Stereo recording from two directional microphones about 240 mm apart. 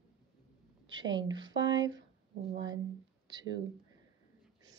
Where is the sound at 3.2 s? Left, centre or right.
Centre.